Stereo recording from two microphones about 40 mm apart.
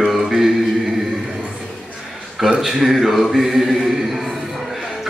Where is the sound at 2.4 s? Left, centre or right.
Centre.